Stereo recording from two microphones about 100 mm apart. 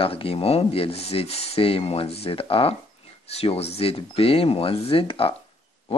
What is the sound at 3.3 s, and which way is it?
Speech, 90° left.